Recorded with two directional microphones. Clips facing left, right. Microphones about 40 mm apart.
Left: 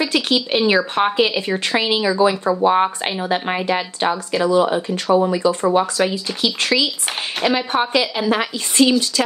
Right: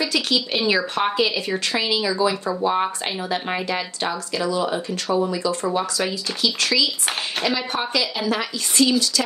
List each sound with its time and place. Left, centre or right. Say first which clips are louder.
0.0 s speech: left 3 dB; left